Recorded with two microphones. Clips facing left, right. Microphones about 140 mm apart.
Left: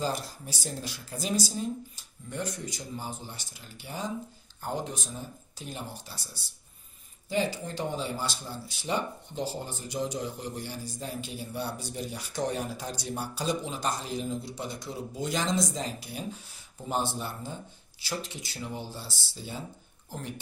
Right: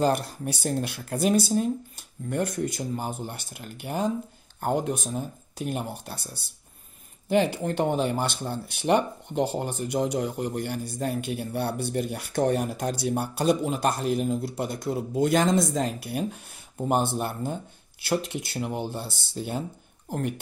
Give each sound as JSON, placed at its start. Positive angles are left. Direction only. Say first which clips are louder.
{"t": 0.0, "sound": "speech", "louder": "right 8 dB", "side_deg": -60}
{"t": 7.2, "sound": "speech", "louder": "right 7 dB", "side_deg": -60}